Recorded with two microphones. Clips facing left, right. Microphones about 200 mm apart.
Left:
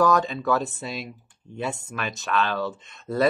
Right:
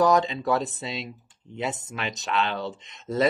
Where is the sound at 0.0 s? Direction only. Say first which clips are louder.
Even; 20° right (ahead or behind).